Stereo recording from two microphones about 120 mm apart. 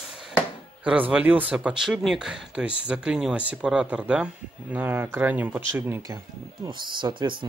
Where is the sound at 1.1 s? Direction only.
15° right (ahead or behind).